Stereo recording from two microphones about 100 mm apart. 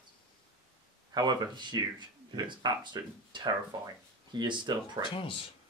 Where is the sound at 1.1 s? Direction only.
45° right (ahead or behind).